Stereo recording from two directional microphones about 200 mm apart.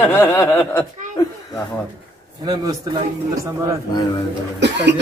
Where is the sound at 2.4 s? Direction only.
20° right (ahead or behind).